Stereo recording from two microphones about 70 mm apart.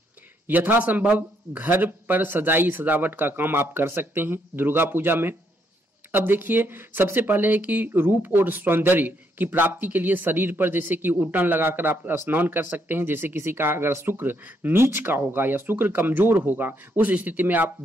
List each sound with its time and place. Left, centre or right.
0.5 s speech: right